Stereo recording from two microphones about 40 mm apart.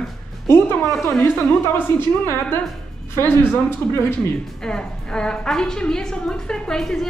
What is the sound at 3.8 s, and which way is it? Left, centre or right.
Speech, left.